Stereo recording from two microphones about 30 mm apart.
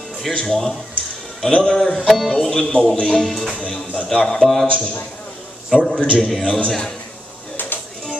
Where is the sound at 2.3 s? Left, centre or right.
Centre.